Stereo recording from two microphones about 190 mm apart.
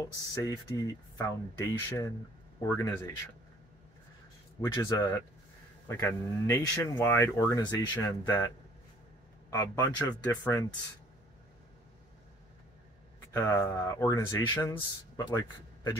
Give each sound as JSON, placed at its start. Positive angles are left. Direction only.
{"t": 0.0, "sound": "speech", "side_deg": 15}
{"t": 4.6, "sound": "speech", "side_deg": 15}
{"t": 9.5, "sound": "speech", "side_deg": 20}
{"t": 13.3, "sound": "speech", "side_deg": 15}